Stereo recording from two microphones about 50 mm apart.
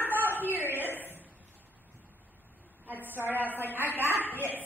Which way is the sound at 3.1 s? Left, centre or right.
Right.